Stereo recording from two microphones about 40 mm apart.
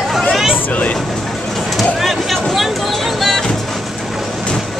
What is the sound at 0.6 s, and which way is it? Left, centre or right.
Vehicle, left.